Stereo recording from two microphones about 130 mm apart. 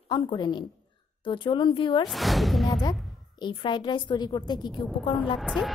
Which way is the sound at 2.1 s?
Centre (ahead or behind).